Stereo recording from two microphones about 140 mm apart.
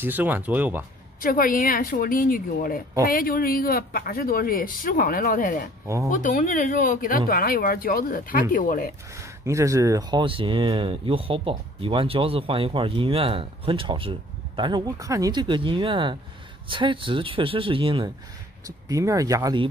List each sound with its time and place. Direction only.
0.0 s speech: 15° right (ahead or behind)
1.2 s speech: 90° left
6.0 s speech: 70° left (ahead or behind)
9.1 s speech: 20° right (ahead or behind); by 18.1 s 40° right (ahead or behind)
18.7 s speech: 25° right (ahead or behind)